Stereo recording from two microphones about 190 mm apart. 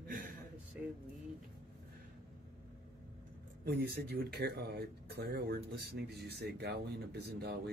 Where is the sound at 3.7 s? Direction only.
60° right (ahead or behind).